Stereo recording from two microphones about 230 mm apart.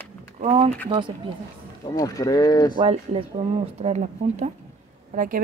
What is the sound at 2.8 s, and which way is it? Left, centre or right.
Speech, right.